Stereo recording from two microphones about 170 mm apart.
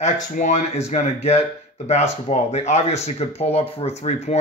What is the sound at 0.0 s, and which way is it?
Speech, 45° left (ahead or behind).